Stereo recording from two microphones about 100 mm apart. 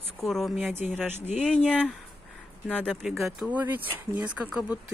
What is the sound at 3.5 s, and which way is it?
Speech, 15° right (ahead or behind).